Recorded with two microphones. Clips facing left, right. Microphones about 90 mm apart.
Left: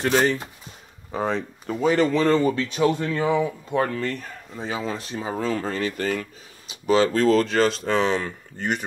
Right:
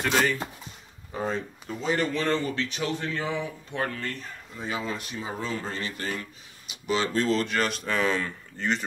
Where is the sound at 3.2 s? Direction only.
90° left.